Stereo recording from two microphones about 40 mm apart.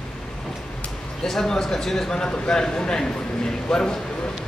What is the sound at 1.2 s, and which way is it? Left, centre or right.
A man's voice, centre.